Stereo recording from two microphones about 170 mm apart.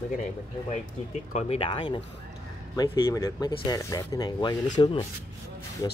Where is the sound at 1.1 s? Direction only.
40° left (ahead or behind).